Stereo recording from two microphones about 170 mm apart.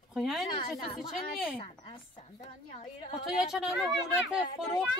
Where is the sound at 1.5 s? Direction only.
30° left (ahead or behind).